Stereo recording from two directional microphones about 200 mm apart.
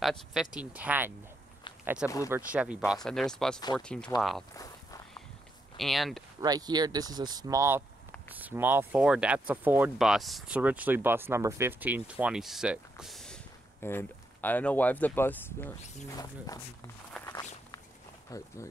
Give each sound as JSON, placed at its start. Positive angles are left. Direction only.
{"t": 0.0, "sound": "speech", "side_deg": 0}
{"t": 2.2, "sound": "speech", "side_deg": -10}
{"t": 5.8, "sound": "speech", "side_deg": 0}
{"t": 6.4, "sound": "speech", "side_deg": -20}
{"t": 17.3, "sound": "walk", "side_deg": 20}
{"t": 18.3, "sound": "speech", "side_deg": 15}